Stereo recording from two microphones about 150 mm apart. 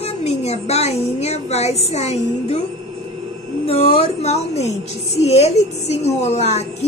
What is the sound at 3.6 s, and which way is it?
A woman's voice, 40° left (ahead or behind).